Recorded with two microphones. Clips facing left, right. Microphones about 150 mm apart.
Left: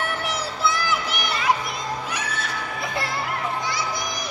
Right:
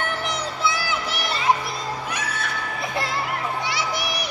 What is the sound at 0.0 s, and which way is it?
Music, 5° left (ahead or behind).